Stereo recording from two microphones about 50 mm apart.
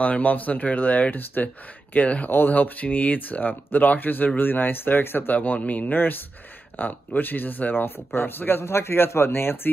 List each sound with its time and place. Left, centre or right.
0.0 s speech: left
8.6 s speech: left